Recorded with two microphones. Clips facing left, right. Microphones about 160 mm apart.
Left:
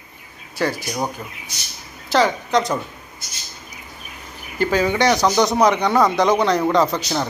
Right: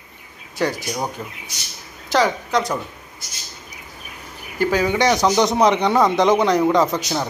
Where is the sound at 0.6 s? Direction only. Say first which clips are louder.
Even; 15° right (ahead or behind).